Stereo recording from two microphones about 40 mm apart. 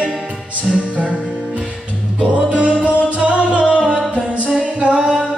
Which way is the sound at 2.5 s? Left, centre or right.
Right.